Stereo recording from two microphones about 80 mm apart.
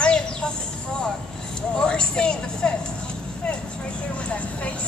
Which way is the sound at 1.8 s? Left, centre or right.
Centre.